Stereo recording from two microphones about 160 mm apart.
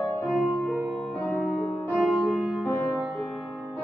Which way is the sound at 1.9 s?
5° right (ahead or behind).